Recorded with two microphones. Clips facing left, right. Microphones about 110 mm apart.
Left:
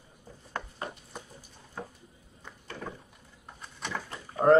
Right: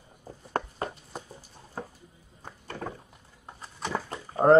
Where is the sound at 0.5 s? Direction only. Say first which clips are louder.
Right 6 dB; 45° right (ahead or behind).